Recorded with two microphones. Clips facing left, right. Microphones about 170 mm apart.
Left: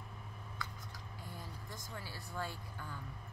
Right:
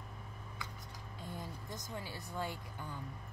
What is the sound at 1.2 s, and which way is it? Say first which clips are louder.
Speech: right 5 dB; 20° right (ahead or behind).